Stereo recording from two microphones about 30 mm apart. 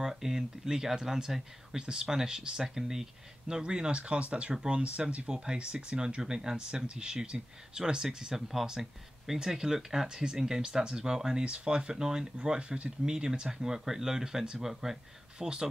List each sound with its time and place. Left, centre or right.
0.0 s speech: centre
8.4 s speech: centre
11.6 s speech: right
12.5 s speech: right
13.0 s speech: right
13.7 s speech: centre
15.3 s speech: right